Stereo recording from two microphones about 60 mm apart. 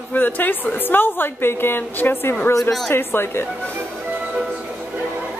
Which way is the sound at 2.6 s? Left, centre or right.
Centre.